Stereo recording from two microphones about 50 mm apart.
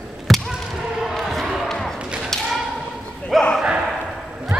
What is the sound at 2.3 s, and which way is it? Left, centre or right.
Thump, centre.